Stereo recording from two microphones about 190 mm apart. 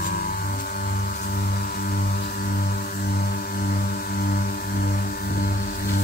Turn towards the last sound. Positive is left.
turn(degrees=50)  # may be behind; listen again after turning